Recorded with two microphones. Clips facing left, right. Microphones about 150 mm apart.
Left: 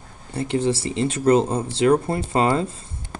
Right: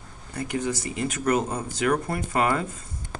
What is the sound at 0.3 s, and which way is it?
Speech, 30° left (ahead or behind).